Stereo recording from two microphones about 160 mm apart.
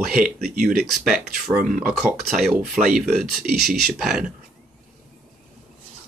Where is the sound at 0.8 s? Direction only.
Centre (ahead or behind).